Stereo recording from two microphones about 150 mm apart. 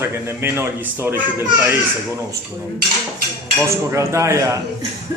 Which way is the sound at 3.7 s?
20° right (ahead or behind).